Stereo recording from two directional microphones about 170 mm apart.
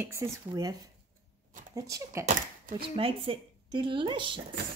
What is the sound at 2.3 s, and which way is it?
Speech, 55° right (ahead or behind).